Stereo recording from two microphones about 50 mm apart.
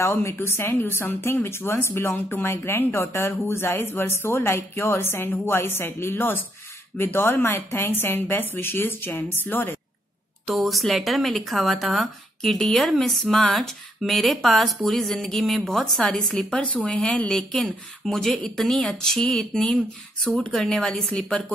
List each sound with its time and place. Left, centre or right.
0.1 s a woman's voice: left
10.4 s speech: centre; by 17.3 s left
17.3 s speech: centre